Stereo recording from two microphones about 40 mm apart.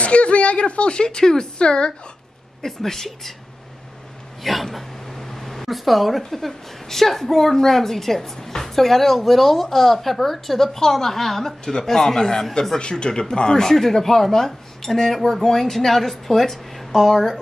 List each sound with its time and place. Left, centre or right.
0.0 s speech: left
2.6 s speech: centre
4.4 s speech: centre